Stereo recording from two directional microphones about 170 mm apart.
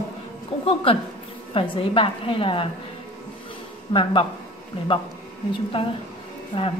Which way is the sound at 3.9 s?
30° left (ahead or behind).